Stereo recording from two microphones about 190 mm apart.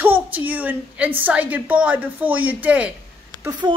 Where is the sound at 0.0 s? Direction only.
10° right (ahead or behind).